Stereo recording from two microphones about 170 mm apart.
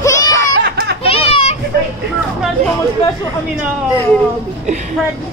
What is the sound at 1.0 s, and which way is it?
Children playing, 35° left (ahead or behind).